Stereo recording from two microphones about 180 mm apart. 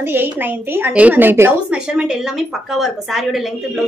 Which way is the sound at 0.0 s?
10° right (ahead or behind).